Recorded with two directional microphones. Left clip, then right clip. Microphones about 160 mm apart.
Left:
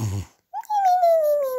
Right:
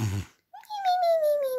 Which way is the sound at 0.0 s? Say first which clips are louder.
Left 1 dB; 5° right (ahead or behind).